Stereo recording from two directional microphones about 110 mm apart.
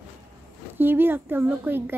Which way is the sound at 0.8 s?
20° right (ahead or behind).